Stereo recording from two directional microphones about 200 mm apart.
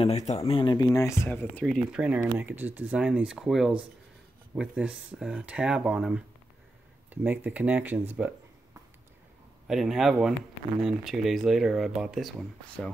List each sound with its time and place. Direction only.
0.0 s speech: 35° left (ahead or behind)
0.4 s speech: 25° left (ahead or behind); by 6.2 s 5° right (ahead or behind)
7.2 s speech: 10° right (ahead or behind)
9.7 s speech: centre (ahead or behind)